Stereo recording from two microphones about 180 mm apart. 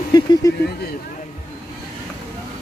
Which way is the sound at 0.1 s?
25° left (ahead or behind).